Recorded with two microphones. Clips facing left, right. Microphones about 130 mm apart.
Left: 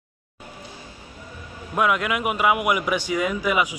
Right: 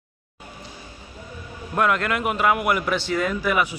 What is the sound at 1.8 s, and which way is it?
A man's voice, 10° left (ahead or behind).